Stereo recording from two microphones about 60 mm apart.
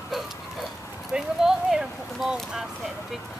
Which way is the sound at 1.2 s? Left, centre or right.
Centre.